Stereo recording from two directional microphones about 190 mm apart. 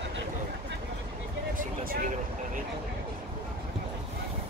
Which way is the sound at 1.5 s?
45° right (ahead or behind).